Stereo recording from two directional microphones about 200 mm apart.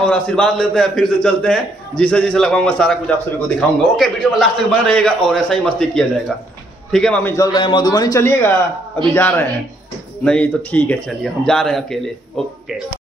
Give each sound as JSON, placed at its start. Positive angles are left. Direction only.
{"t": 0.0, "sound": "a man's voice", "side_deg": 5}
{"t": 7.3, "sound": "a man's voice", "side_deg": 20}